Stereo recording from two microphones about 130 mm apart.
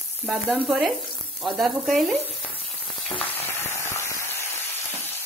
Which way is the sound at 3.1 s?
20° left (ahead or behind).